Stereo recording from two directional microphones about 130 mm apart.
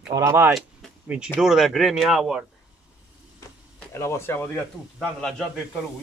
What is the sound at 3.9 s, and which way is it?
Speech, 20° left (ahead or behind).